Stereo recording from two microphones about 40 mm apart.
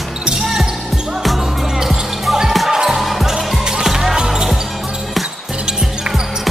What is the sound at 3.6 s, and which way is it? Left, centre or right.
Music, centre.